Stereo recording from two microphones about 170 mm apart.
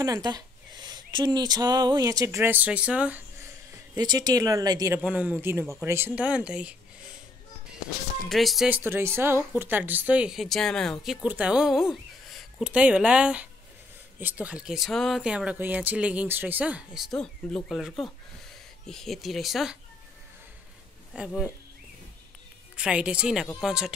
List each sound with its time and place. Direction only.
0.0 s speech: 20° right (ahead or behind)
5.0 s speech: 10° right (ahead or behind)
8.3 s a woman's voice: centre (ahead or behind)
21.1 s speech: 5° right (ahead or behind)
22.8 s a woman's voice: 5° right (ahead or behind)